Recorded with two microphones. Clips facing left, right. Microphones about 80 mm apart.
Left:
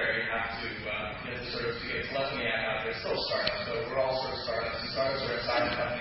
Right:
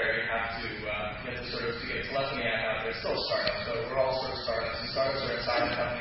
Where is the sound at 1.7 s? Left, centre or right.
Centre.